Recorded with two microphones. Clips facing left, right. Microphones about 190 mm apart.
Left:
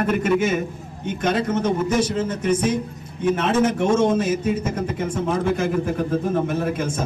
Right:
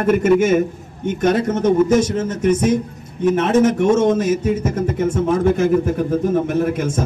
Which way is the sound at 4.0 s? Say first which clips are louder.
Right 3 dB; 40° right (ahead or behind).